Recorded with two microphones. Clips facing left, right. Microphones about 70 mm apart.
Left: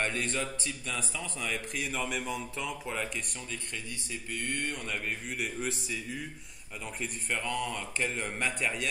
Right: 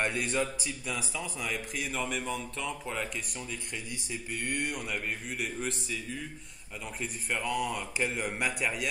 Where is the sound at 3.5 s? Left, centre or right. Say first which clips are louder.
Right 1 dB; centre.